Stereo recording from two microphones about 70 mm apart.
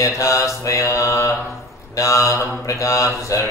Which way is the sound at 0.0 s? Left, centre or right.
Left.